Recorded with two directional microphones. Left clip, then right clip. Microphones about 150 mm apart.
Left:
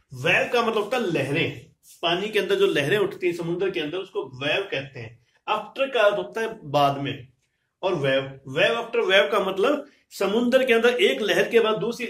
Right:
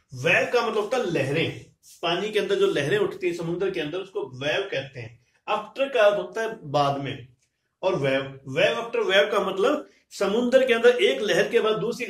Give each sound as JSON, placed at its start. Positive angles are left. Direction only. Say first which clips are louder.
{"t": 0.2, "sound": "a man's voice", "louder": "even", "side_deg": 20}